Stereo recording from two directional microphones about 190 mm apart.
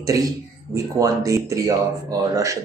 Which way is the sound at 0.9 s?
15° right (ahead or behind).